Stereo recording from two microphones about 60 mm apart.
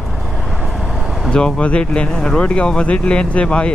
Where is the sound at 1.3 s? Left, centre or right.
Centre.